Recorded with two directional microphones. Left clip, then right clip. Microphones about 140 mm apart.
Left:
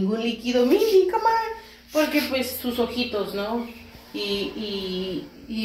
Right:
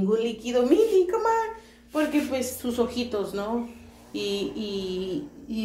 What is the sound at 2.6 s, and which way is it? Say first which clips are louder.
Speech: left 2 dB; 25° right (ahead or behind).